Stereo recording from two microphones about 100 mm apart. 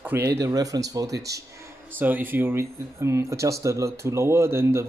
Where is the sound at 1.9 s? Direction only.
20° right (ahead or behind).